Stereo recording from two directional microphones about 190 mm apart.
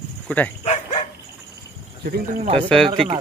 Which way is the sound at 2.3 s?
35° right (ahead or behind).